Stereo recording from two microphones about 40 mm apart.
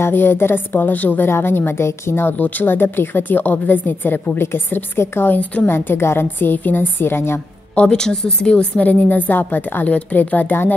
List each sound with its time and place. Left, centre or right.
0.0 s a woman's voice: left
1.3 s a woman's voice: left
2.6 s a woman's voice: left
7.7 s a woman's voice: left
8.8 s a woman's voice: left
9.8 s a woman's voice: left